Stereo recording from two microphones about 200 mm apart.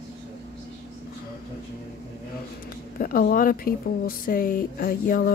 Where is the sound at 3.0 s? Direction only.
45° left (ahead or behind).